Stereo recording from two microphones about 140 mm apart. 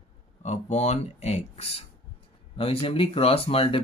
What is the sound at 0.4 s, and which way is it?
Speech, 55° left (ahead or behind).